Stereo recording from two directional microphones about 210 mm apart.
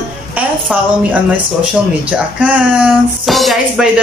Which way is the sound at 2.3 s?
5° right (ahead or behind).